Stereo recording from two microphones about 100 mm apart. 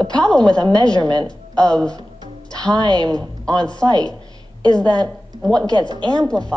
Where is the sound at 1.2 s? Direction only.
10° left (ahead or behind).